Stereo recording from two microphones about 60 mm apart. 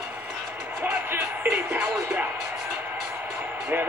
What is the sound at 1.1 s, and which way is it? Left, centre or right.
Music, right.